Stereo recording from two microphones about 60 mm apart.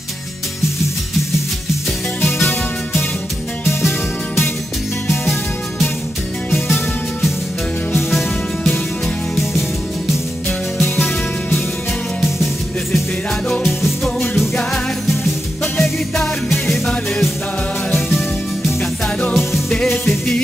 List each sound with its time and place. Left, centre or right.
5.0 s music: left
6.7 s music: centre
14.3 s music: centre
15.6 s music: centre
18.8 s music: left
19.7 s music: centre